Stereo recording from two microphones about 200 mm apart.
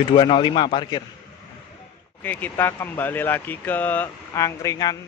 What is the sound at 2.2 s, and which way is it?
Speech, 10° left (ahead or behind).